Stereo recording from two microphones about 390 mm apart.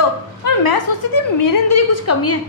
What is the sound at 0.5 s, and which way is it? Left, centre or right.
A woman's voice, left.